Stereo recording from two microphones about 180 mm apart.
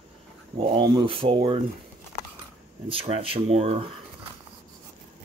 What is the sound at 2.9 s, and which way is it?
Speech, 30° right (ahead or behind).